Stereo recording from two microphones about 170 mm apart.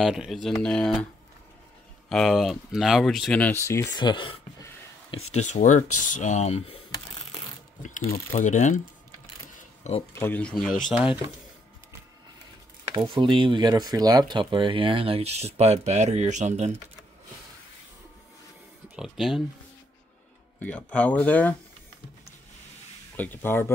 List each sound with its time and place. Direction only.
0.0 s speech: centre (ahead or behind)
2.0 s speech: centre (ahead or behind)
4.0 s a sound: 30° left (ahead or behind)
5.1 s speech: 40° left (ahead or behind)
7.8 s speech: 45° left (ahead or behind)
9.6 s camera: 40° left (ahead or behind)
10.1 s speech: 10° left (ahead or behind)
12.9 s speech: 25° right (ahead or behind); by 16.7 s 45° right (ahead or behind)
18.9 s speech: centre (ahead or behind)
20.5 s speech: 10° left (ahead or behind)
23.1 s speech: 10° left (ahead or behind)